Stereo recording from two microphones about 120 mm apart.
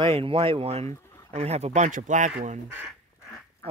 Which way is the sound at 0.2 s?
50° right (ahead or behind).